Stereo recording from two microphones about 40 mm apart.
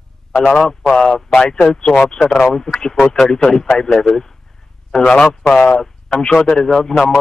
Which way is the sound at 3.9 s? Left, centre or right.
Centre.